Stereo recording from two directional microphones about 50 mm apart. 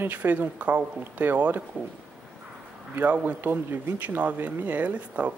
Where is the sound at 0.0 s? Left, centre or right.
Right.